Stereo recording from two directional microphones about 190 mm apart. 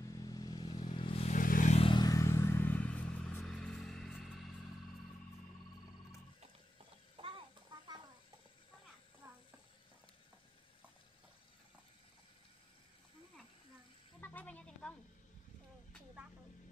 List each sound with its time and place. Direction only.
0.0 s vehicle: 20° left (ahead or behind); by 1.8 s 45° left (ahead or behind)
1.8 s vehicle: 25° left (ahead or behind); by 4.5 s centre (ahead or behind)
7.2 s a sound: 25° right (ahead or behind)
9.2 s stir: 15° right (ahead or behind)
14.2 s music: 10° left (ahead or behind)